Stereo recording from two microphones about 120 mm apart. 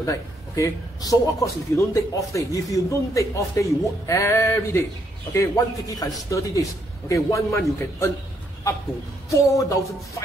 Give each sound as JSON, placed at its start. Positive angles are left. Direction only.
{"t": 0.0, "sound": "a man's voice", "side_deg": 25}
{"t": 9.3, "sound": "a man's voice", "side_deg": 25}